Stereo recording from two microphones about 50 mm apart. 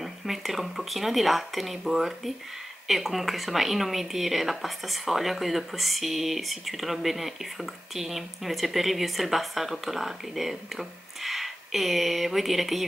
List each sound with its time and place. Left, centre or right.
0.0 s speech: centre